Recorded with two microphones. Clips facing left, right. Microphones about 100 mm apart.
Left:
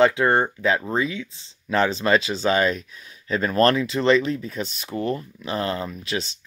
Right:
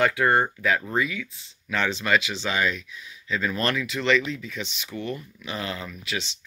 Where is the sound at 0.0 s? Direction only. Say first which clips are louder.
Left 3 dB; 25° left (ahead or behind).